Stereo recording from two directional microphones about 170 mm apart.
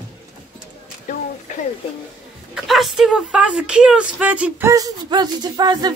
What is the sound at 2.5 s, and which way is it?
Speech, centre (ahead or behind).